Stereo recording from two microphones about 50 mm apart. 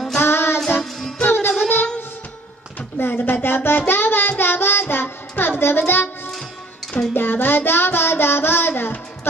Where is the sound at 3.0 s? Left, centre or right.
Left.